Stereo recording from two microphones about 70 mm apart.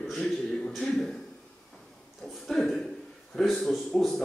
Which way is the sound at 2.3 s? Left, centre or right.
Centre.